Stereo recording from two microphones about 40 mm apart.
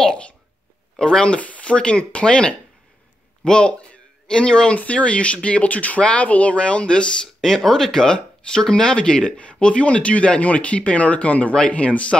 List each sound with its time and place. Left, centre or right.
0.9 s speech: left
7.4 s a man's voice: centre; by 12.2 s left